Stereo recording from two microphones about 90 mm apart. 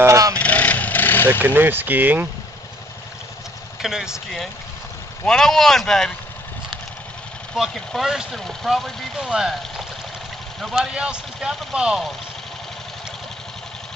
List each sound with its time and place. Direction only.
0.0 s vehicle: 35° right (ahead or behind)
0.4 s vehicle: 15° left (ahead or behind)
1.4 s speech: 20° right (ahead or behind)
3.8 s speech: 5° right (ahead or behind)
7.5 s speech: 5° left (ahead or behind)